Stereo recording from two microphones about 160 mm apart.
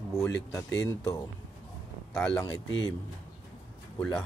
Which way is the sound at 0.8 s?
20° left (ahead or behind).